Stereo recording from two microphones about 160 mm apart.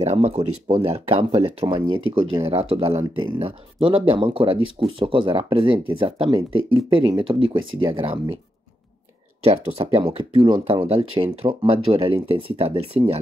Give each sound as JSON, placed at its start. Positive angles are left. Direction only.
{"t": 0.0, "sound": "speech", "side_deg": -40}
{"t": 9.4, "sound": "speech", "side_deg": -40}